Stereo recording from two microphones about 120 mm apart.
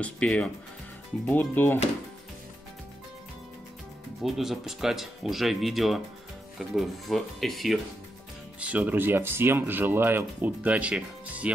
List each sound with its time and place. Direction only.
0.0 s speech: 10° left (ahead or behind)
4.2 s speech: centre (ahead or behind)
8.5 s speech: 10° right (ahead or behind)